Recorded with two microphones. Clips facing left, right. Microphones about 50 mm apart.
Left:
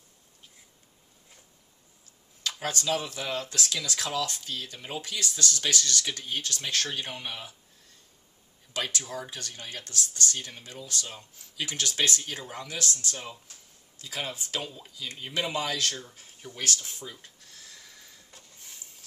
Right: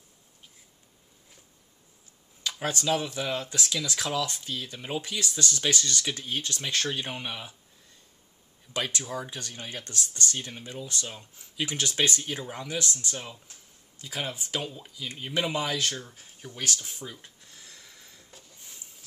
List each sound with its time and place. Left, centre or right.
2.4 s speech: centre
9.0 s speech: centre
9.6 s speech: right
12.2 s speech: centre
17.4 s a sound: centre